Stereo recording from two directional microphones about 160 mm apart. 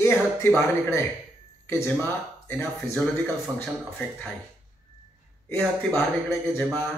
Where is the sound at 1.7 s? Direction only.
15° left (ahead or behind).